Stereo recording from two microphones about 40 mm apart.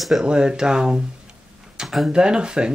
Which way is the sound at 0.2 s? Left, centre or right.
Right.